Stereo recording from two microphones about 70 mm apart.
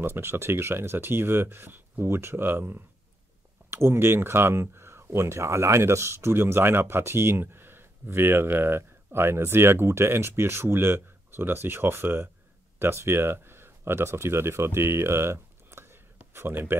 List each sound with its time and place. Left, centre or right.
0.0 s speech: right